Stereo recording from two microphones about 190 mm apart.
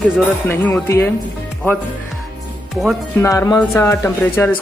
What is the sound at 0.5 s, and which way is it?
Speech, 10° left (ahead or behind).